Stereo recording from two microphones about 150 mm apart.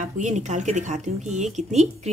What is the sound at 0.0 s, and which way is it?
Speech, 55° right (ahead or behind).